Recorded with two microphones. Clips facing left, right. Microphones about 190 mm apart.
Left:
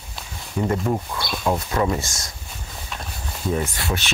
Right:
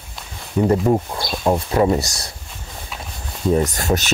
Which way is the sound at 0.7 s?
35° right (ahead or behind).